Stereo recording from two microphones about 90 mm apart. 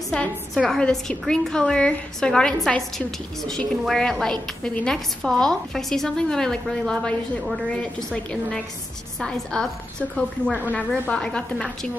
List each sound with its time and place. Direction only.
0.6 s a woman's voice: 10° left (ahead or behind)